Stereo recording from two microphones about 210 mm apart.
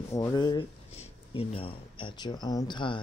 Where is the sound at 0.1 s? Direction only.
15° left (ahead or behind).